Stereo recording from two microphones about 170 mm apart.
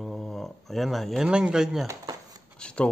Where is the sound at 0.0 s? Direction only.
Centre (ahead or behind).